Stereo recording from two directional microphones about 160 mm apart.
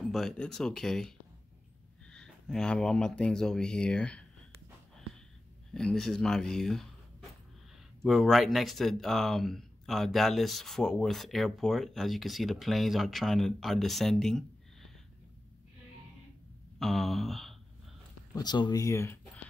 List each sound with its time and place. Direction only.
0.0 s speech: centre (ahead or behind)
5.7 s speech: 5° left (ahead or behind)
8.0 s speech: centre (ahead or behind)
16.7 s a sound: centre (ahead or behind)
18.3 s speech: 25° left (ahead or behind)